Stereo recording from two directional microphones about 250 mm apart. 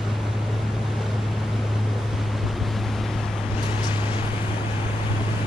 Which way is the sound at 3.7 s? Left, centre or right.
Centre.